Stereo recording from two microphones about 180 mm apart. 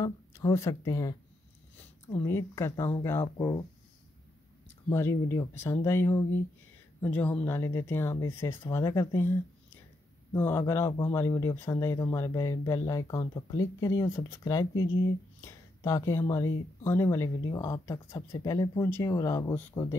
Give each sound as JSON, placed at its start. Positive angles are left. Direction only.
{"t": 0.0, "sound": "speech", "side_deg": 20}
{"t": 4.8, "sound": "speech", "side_deg": 15}
{"t": 10.3, "sound": "speech", "side_deg": 10}